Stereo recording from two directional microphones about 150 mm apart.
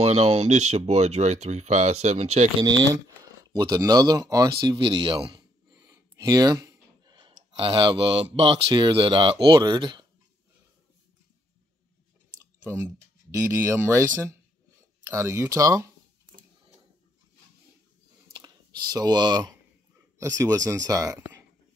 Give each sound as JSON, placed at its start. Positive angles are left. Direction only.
{"t": 0.0, "sound": "speech", "side_deg": -45}
{"t": 2.6, "sound": "speech", "side_deg": -30}
{"t": 12.4, "sound": "clicking", "side_deg": -15}
{"t": 13.5, "sound": "speech", "side_deg": -15}
{"t": 18.3, "sound": "computer keyboard", "side_deg": -30}
{"t": 20.2, "sound": "speech", "side_deg": -20}